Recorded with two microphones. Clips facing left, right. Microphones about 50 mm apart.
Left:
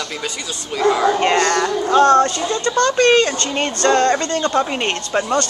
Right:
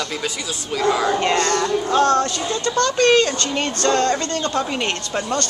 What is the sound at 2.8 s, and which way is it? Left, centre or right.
Speech, left.